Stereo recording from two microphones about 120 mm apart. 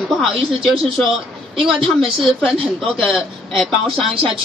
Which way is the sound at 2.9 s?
Centre (ahead or behind).